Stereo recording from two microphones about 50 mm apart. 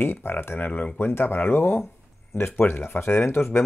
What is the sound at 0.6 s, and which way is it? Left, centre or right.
Speech, left.